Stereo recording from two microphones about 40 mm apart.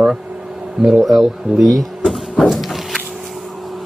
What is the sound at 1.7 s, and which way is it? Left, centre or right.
Power windows, centre.